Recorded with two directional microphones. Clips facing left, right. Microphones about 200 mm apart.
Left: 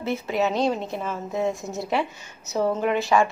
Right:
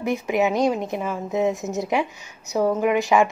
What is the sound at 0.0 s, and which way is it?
A woman's voice, 15° right (ahead or behind).